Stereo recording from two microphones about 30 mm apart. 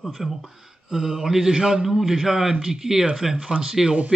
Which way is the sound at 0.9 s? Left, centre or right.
Centre.